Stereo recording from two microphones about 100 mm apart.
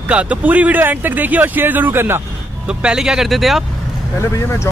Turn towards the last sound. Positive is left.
turn(degrees=30)  # may be behind; listen again after turning